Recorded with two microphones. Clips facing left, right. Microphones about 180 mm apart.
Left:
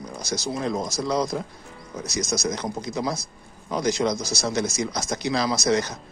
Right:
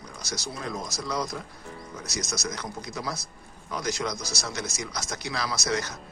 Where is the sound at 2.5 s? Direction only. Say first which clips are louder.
Left 7 dB; 25° left (ahead or behind).